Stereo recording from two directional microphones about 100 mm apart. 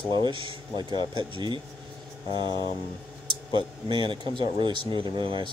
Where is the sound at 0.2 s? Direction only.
55° right (ahead or behind).